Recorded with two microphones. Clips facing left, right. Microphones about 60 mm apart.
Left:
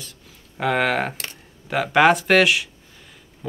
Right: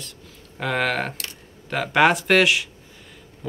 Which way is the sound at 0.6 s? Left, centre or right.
Centre.